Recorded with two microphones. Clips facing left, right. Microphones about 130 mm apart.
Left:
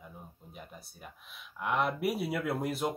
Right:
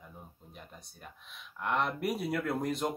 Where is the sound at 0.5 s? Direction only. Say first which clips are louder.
Left 2 dB; 5° left (ahead or behind).